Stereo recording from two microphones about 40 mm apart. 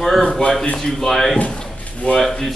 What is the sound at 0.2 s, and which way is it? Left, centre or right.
Speech, left.